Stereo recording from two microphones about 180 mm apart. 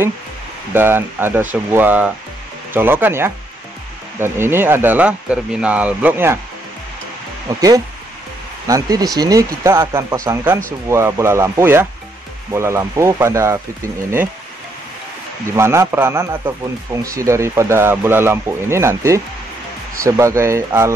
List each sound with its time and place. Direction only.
0.7 s a man's voice: 10° right (ahead or behind)
7.5 s a man's voice: 20° right (ahead or behind)
15.4 s a man's voice: 15° right (ahead or behind)